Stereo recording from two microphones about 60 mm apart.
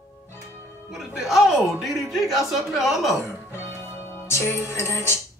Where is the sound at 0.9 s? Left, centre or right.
Centre.